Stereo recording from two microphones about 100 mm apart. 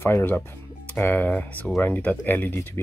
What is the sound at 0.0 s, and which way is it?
Speech, 25° left (ahead or behind).